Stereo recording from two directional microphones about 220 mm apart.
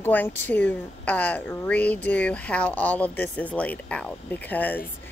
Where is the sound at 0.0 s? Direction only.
10° left (ahead or behind).